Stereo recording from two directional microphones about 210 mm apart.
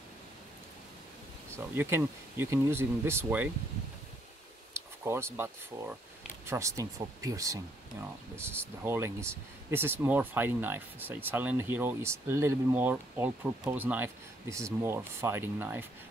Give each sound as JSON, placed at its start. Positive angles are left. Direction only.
{"t": 1.8, "sound": "speech", "side_deg": -10}
{"t": 4.7, "sound": "speech", "side_deg": -10}